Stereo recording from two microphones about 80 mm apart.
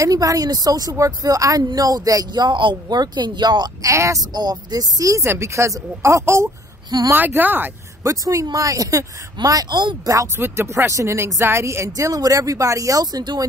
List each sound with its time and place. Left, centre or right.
0.0 s speech: right
2.3 s speech: right
3.0 s speech: right
3.8 s speech: right
4.3 s speech: right
5.2 s speech: right
7.2 s speech: right
8.0 s speech: right
10.0 s speech: right
10.3 s speech: right